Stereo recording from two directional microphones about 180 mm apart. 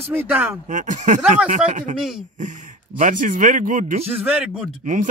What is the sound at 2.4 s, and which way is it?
Speech, 45° right (ahead or behind).